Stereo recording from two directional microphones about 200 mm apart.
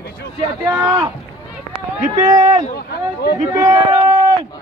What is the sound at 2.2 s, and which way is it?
Speech, 20° right (ahead or behind).